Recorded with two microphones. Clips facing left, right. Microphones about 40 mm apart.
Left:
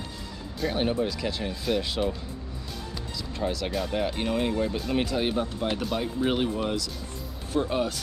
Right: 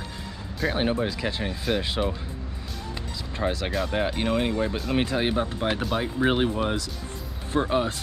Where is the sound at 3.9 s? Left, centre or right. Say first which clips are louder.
Right 2 dB; right.